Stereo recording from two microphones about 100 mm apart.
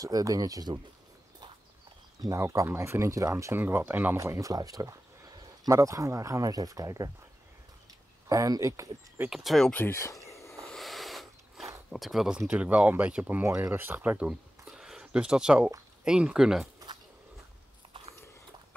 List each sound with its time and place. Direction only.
0.0 s speech: 35° right (ahead or behind)
2.2 s speech: 30° right (ahead or behind)
3.6 s speech: 20° right (ahead or behind)
4.2 s speech: 30° right (ahead or behind)
8.3 s speech: 35° right (ahead or behind)
9.3 s speech: centre (ahead or behind)
9.8 s speech: 30° left (ahead or behind)
10.5 s a sound: centre (ahead or behind)
12.4 s speech: 15° right (ahead or behind)
13.4 s speech: 25° right (ahead or behind)
14.7 s a sound: 5° right (ahead or behind)
16.0 s speech: 10° right (ahead or behind)